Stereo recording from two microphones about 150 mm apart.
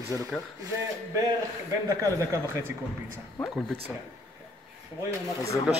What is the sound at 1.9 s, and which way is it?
Speech, 20° right (ahead or behind).